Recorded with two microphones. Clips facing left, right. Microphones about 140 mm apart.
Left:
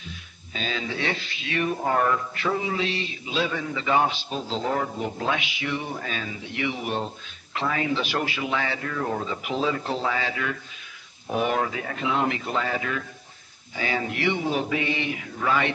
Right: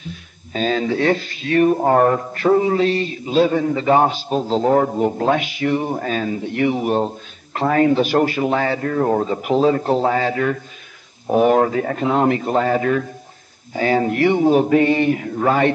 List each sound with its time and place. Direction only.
0.1 s speech: 45° right (ahead or behind)